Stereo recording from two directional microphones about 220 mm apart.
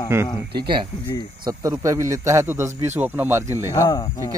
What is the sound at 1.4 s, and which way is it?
Speech, 15° right (ahead or behind).